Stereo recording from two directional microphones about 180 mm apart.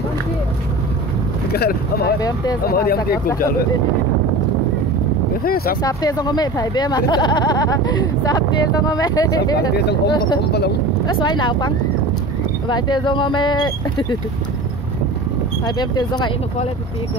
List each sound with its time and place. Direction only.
1.5 s speech: 60° left (ahead or behind)
2.1 s speech: 20° left (ahead or behind)
2.6 s speech: 55° left (ahead or behind)
5.4 s speech: 55° left (ahead or behind)
5.8 s speech: 20° left (ahead or behind)
9.8 s speech: 70° left (ahead or behind)
11.1 s speech: 25° left (ahead or behind)
15.6 s speech: 25° left (ahead or behind)